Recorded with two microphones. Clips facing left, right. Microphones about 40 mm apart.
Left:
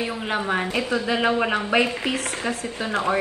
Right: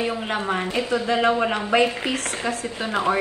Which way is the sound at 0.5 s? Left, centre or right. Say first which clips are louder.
Even; centre.